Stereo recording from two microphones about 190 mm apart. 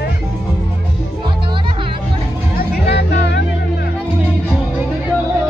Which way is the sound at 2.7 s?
60° left (ahead or behind).